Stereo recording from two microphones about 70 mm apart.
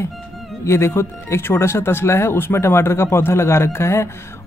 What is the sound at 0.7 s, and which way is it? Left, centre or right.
Speech, left.